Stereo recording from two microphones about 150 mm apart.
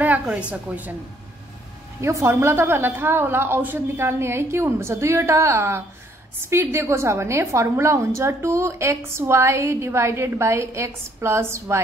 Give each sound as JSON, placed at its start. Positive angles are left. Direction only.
{"t": 0.5, "sound": "a woman's voice", "side_deg": -10}
{"t": 2.0, "sound": "a woman's voice", "side_deg": -20}